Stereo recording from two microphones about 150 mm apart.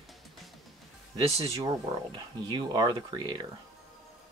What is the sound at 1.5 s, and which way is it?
Speech, 25° right (ahead or behind).